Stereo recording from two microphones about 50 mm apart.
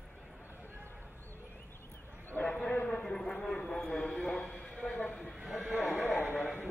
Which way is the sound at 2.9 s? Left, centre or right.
Centre.